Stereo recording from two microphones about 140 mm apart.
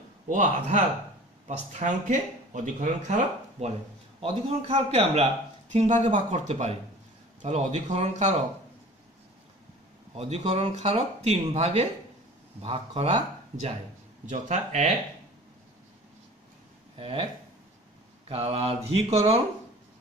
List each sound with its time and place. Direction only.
0.3 s speech: 55° right (ahead or behind)
4.2 s speech: 45° right (ahead or behind)
10.1 s speech: 50° right (ahead or behind)
17.0 s speech: 40° right (ahead or behind)
18.3 s speech: 45° right (ahead or behind)